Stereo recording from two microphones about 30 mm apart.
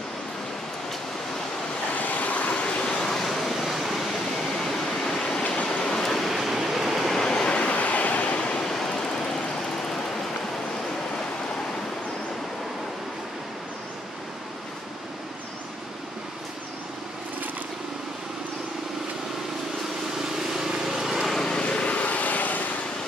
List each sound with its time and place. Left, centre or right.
2.0 s vehicle: left
2.8 s vehicle: left
3.3 s vehicle: centre
4.6 s waterfall: centre
5.7 s waves: left
6.2 s a sound: centre
7.0 s train: centre
7.3 s vehicle: left
7.7 s a sound: left
8.5 s train: centre
20.5 s vehicle: centre
21.4 s vehicle: left
21.6 s vehicle: left